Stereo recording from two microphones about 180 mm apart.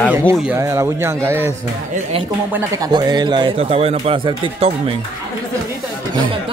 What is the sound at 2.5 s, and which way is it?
Speech, 15° right (ahead or behind).